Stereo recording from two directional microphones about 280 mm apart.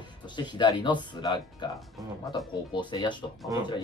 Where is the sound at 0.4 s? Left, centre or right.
Centre.